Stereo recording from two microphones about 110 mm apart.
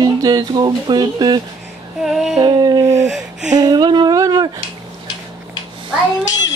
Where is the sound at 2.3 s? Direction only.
40° right (ahead or behind).